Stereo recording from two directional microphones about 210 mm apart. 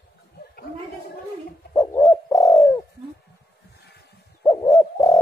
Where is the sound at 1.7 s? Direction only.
15° left (ahead or behind).